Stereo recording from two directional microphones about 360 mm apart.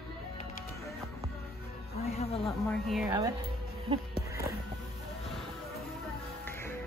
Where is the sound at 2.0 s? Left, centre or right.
Centre.